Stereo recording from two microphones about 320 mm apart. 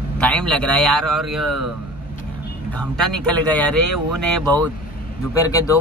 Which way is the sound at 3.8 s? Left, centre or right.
Right.